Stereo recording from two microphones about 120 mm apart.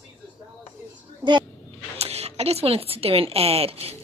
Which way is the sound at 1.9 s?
60° right (ahead or behind).